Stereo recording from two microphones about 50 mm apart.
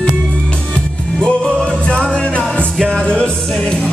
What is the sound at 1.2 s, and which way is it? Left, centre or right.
Music, centre.